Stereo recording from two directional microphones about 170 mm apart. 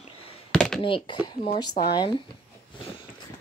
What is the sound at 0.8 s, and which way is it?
Speech, 30° left (ahead or behind).